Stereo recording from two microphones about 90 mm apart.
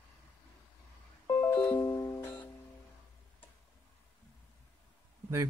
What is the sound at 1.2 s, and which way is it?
Music, 25° left (ahead or behind).